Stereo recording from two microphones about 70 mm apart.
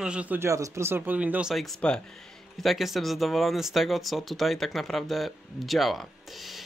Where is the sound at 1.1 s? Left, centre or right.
Right.